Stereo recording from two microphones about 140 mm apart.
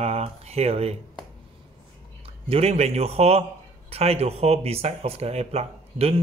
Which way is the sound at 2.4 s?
45° right (ahead or behind).